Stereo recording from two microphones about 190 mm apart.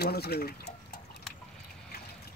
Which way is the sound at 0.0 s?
55° left (ahead or behind).